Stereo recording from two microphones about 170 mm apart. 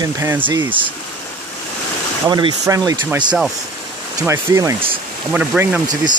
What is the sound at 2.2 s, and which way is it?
Speech, 20° right (ahead or behind).